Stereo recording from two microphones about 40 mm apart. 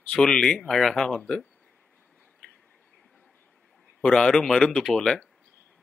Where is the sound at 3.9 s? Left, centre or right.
Centre.